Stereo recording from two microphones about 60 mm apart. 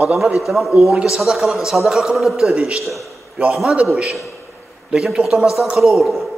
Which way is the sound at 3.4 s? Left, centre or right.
Right.